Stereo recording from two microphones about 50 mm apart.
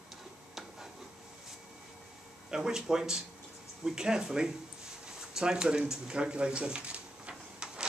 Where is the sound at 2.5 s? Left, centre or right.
Centre.